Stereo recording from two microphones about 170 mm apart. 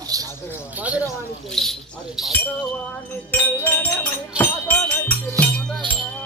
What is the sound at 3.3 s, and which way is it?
Music, 10° left (ahead or behind).